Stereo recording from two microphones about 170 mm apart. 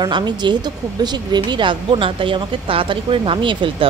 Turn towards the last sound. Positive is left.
turn(degrees=-30)  # may be behind; listen again after turning